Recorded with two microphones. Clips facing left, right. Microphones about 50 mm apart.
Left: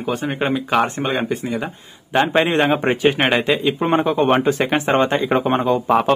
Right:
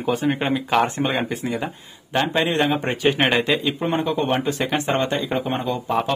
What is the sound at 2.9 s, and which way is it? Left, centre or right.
Speech, centre.